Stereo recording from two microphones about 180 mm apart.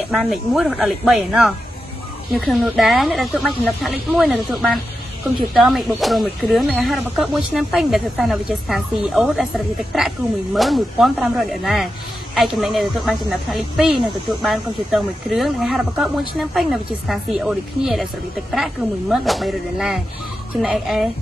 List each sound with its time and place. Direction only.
0.1 s speech: centre (ahead or behind)